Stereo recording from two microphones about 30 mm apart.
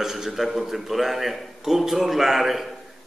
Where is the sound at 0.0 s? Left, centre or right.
Centre.